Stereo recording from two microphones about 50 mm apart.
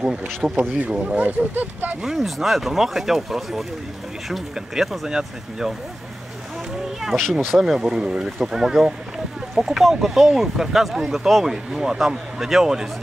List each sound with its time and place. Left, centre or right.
0.0 s speech: centre
0.6 s speech: right
2.0 s speech: centre
7.0 s speech: centre
7.5 s speech: centre